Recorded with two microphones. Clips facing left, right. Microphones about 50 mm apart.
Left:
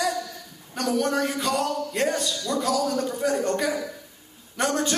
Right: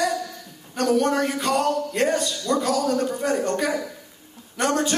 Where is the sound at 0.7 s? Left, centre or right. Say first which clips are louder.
Right 4 dB; right.